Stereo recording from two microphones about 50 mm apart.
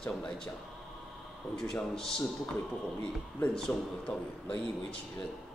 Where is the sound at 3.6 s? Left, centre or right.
Left.